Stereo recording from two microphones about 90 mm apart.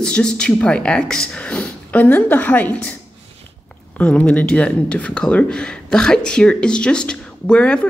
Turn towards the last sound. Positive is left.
turn(degrees=10)  # may be behind; listen again after turning